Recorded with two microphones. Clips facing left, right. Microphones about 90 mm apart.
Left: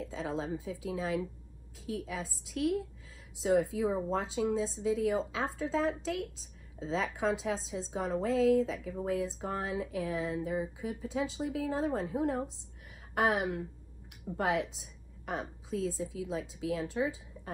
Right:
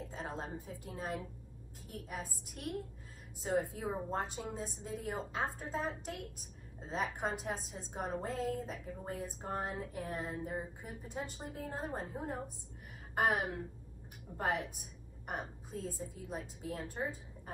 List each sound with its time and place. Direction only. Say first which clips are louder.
0.2 s a woman's voice: left 7 dB; 90° left